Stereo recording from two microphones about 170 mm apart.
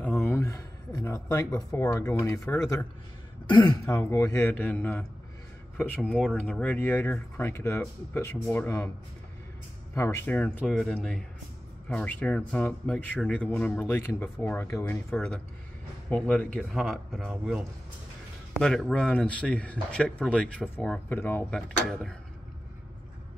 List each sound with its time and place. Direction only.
0.0 s a sound: 10° left (ahead or behind)
0.4 s speech: 20° left (ahead or behind)
9.9 s speech: 15° left (ahead or behind)